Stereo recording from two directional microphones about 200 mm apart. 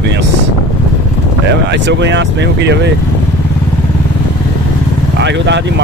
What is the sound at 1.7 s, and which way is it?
Speech, 60° right (ahead or behind).